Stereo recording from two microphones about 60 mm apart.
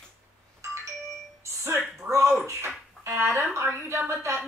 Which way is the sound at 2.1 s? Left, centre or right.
Right.